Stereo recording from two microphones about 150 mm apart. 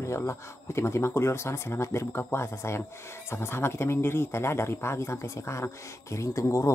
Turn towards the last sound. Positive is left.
turn(degrees=20)  # may be behind; listen again after turning